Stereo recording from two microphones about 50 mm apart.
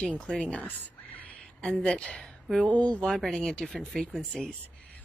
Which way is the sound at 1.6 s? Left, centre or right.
Centre.